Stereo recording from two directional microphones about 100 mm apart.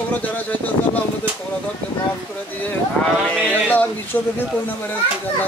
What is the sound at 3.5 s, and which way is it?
Speech, 20° left (ahead or behind).